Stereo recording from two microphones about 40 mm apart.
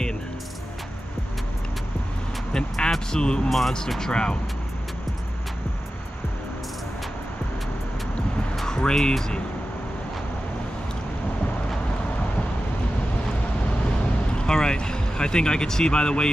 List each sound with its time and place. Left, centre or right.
2.5 s vehicle: centre
3.1 s speech: left
3.4 s speech: centre
4.0 s speech: left
8.6 s music: centre
8.9 s speech: centre
14.3 s speech: centre